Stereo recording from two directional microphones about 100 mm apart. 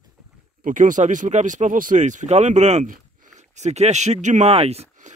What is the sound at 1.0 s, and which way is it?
Speech, 90° right.